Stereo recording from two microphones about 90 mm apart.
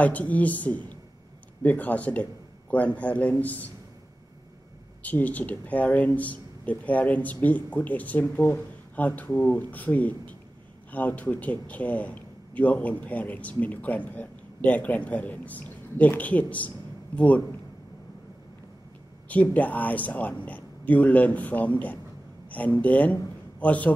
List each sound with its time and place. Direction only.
0.0 s a man's voice: 15° left (ahead or behind)
5.0 s a man's voice: 20° left (ahead or behind)
19.2 s a man's voice: 15° left (ahead or behind)